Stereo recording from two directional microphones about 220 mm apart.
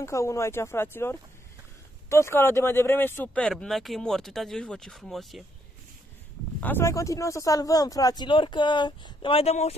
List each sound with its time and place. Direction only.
0.0 s speech: 15° left (ahead or behind)
6.6 s speech: 10° left (ahead or behind); by 9.8 s 30° left (ahead or behind)